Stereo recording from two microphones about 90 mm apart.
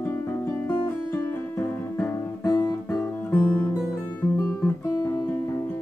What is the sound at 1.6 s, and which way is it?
Music, 25° left (ahead or behind).